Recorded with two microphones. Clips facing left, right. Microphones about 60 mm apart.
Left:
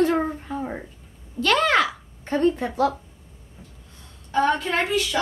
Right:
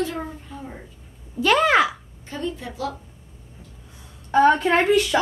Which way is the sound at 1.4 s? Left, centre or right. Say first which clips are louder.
Right 2 dB; centre.